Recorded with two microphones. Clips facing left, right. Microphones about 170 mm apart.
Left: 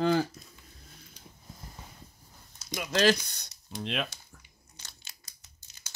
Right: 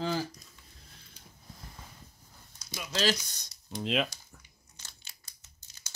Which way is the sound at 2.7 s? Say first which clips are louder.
Left 5 dB; 55° left (ahead or behind).